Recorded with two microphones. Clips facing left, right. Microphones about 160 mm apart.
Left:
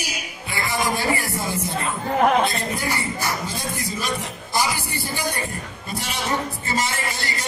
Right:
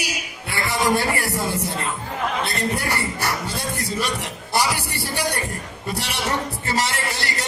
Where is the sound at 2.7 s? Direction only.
65° right (ahead or behind).